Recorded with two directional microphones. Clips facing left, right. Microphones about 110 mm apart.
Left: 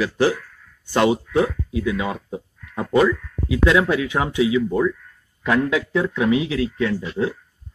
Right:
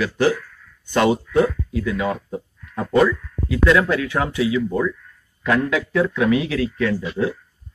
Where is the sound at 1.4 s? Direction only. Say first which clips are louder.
Right 2 dB; 20° left (ahead or behind).